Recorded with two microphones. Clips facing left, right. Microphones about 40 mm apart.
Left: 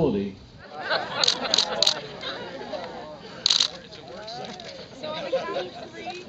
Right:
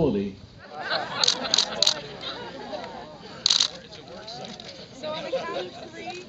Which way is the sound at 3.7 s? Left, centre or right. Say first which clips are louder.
Left 1 dB; centre.